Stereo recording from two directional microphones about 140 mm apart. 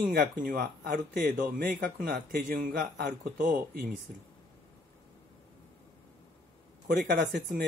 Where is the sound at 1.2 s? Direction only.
85° right.